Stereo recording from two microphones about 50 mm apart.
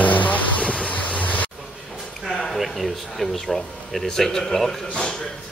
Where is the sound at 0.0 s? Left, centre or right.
Left.